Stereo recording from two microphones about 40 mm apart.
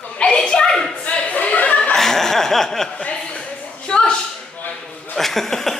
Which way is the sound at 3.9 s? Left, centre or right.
Left.